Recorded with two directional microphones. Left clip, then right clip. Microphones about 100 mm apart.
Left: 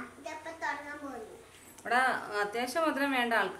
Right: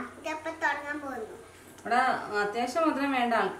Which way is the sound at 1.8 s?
30° left (ahead or behind).